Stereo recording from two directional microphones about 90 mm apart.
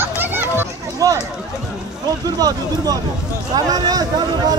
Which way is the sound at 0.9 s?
40° right (ahead or behind).